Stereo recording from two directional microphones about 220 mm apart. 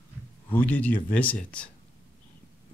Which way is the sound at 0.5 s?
10° left (ahead or behind).